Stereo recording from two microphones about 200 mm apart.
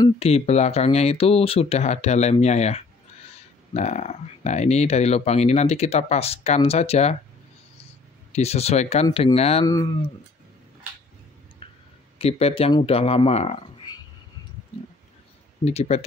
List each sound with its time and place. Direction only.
0.2 s speech: 30° left (ahead or behind)
8.3 s speech: 30° left (ahead or behind)
11.6 s clicking: 25° left (ahead or behind)
12.2 s speech: 30° left (ahead or behind)
15.6 s speech: 35° left (ahead or behind)